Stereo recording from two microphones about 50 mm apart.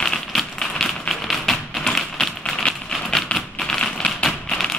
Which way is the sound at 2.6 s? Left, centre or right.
Centre.